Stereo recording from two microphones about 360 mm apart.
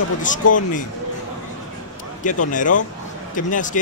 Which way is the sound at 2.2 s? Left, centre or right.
Left.